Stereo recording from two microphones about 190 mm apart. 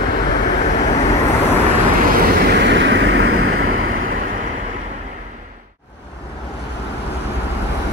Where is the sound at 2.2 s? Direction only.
65° right (ahead or behind); by 3.8 s 90° right.